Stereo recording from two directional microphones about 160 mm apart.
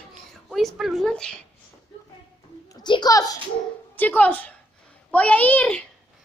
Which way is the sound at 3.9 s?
10° left (ahead or behind).